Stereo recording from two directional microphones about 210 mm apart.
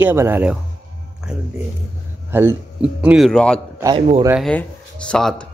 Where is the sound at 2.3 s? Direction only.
10° right (ahead or behind).